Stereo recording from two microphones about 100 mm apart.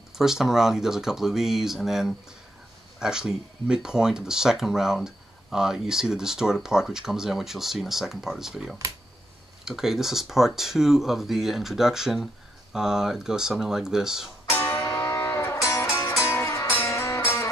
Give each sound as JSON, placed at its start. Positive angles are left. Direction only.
{"t": 0.2, "sound": "speech", "side_deg": -5}
{"t": 14.4, "sound": "music", "side_deg": 25}